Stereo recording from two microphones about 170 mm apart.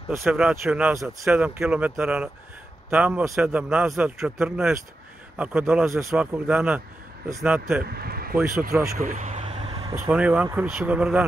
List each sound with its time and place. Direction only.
0.2 s speech: 5° right (ahead or behind)
7.8 s speech: 65° right (ahead or behind)
8.9 s vehicle: 50° right (ahead or behind); by 9.9 s 35° right (ahead or behind)
9.9 s speech: 10° right (ahead or behind)